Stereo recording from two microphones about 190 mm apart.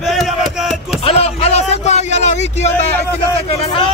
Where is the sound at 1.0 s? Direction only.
30° left (ahead or behind).